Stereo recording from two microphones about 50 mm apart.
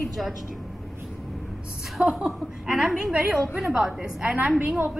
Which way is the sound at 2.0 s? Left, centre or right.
Centre.